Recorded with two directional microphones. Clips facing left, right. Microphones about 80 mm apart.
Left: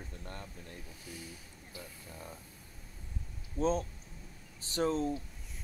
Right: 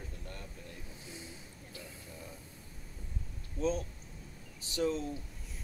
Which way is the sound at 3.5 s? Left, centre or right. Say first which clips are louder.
Left 2 dB; left.